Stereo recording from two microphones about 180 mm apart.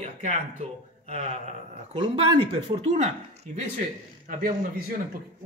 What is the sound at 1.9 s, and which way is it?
Speech, 25° right (ahead or behind).